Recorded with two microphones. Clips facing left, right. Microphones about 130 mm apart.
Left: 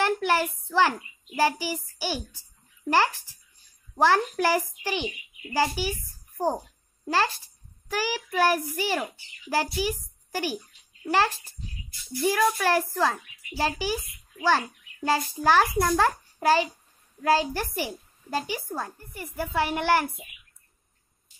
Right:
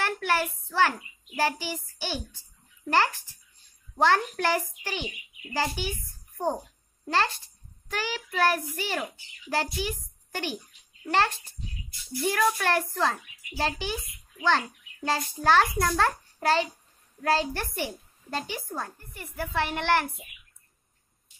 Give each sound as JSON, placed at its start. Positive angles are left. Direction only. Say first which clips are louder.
{"t": 0.0, "sound": "a woman's voice", "louder": "left 3 dB", "side_deg": 15}
{"t": 3.9, "sound": "a woman's voice", "louder": "left 2 dB", "side_deg": 10}